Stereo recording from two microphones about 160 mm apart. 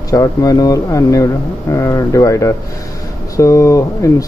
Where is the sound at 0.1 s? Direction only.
20° left (ahead or behind).